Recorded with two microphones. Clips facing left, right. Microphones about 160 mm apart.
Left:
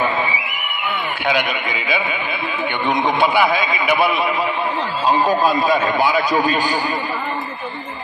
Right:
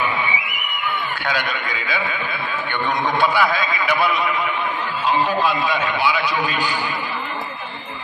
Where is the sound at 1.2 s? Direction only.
20° left (ahead or behind).